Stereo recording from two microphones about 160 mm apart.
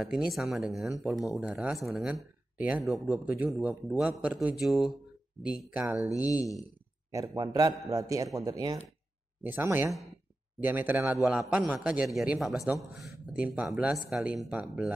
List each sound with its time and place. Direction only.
0.0 s a man's voice: 5° right (ahead or behind)
7.1 s a man's voice: 20° right (ahead or behind)